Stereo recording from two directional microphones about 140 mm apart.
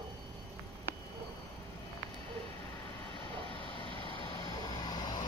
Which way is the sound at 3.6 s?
35° left (ahead or behind).